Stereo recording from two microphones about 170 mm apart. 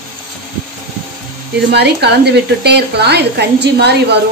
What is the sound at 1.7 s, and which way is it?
A woman's voice, 80° right.